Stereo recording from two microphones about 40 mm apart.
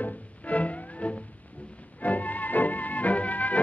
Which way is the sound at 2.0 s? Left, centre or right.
Left.